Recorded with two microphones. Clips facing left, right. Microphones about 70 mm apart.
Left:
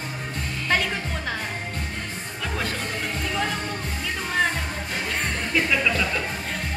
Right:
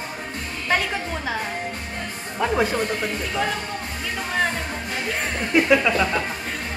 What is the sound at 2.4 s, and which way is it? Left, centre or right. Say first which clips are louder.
Speech: right 9 dB; right.